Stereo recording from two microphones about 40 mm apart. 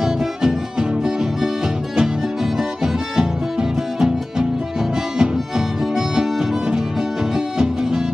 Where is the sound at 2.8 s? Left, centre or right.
Centre.